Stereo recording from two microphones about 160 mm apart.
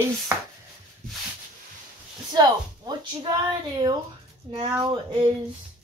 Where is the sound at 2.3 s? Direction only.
25° right (ahead or behind).